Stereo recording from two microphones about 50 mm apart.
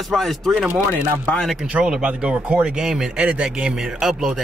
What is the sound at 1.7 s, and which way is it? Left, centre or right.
Speech, right.